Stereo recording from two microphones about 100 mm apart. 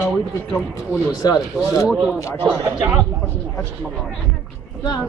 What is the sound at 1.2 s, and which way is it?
Speech, 40° left (ahead or behind).